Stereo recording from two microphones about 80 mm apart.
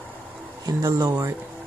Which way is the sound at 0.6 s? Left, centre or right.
Right.